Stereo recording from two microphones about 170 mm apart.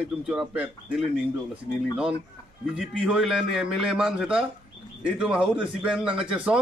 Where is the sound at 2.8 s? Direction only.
Centre (ahead or behind).